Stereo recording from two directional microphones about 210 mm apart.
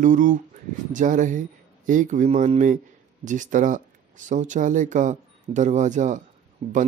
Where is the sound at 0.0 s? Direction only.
35° right (ahead or behind).